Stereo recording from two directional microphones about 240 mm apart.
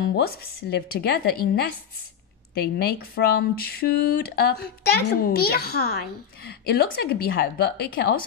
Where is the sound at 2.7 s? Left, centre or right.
Left.